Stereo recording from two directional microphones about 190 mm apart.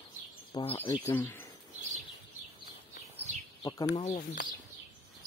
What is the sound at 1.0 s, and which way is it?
Speech, 10° left (ahead or behind).